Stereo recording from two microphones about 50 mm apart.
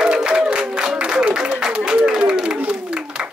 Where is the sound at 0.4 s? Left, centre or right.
Centre.